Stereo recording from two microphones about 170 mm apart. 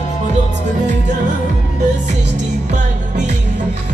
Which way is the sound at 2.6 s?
45° right (ahead or behind).